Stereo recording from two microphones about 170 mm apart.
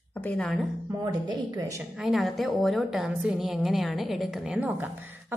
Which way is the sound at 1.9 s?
Centre (ahead or behind).